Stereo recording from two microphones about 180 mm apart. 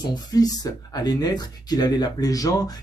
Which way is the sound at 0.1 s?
20° left (ahead or behind).